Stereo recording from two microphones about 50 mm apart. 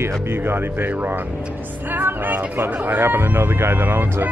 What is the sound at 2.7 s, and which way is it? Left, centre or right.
Speech, right.